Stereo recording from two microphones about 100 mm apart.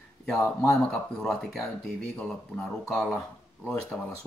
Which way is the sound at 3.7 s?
10° left (ahead or behind).